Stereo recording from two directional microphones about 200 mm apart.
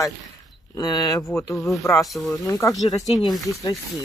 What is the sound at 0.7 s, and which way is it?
Speech, 20° left (ahead or behind).